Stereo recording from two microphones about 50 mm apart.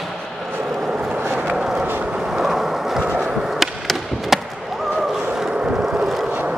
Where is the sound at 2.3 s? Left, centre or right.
Centre.